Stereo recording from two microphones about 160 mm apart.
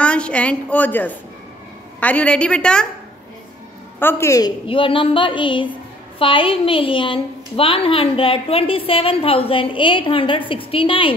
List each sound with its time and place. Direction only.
0.0 s a woman's voice: 5° left (ahead or behind)
4.0 s a woman's voice: 15° left (ahead or behind); by 11.1 s 35° left (ahead or behind)